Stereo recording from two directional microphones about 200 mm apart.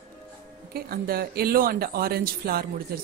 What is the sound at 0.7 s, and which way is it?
Speech, 50° right (ahead or behind).